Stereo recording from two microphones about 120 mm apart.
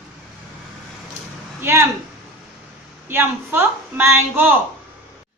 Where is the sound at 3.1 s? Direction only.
20° right (ahead or behind).